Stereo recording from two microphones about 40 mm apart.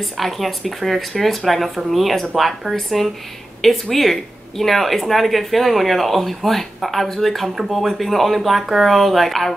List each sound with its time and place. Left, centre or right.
0.0 s speech: centre